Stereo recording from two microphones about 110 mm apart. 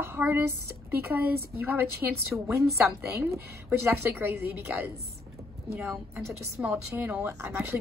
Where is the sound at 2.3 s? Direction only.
5° right (ahead or behind).